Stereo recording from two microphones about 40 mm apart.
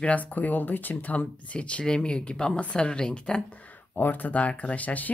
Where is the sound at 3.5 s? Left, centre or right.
Left.